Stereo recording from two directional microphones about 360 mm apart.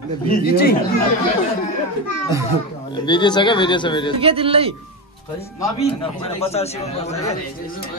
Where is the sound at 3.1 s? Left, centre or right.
Centre.